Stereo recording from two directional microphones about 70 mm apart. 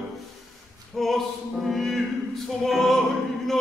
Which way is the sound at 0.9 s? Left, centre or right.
Centre.